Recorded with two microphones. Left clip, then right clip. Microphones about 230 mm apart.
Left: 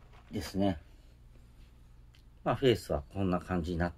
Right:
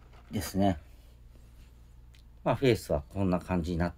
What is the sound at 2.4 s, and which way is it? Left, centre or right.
Speech, right.